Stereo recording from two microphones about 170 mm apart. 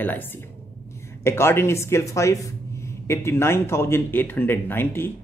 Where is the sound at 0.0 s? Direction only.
10° left (ahead or behind).